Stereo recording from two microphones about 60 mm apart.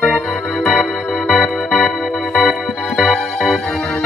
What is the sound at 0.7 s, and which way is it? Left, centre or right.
Music, centre.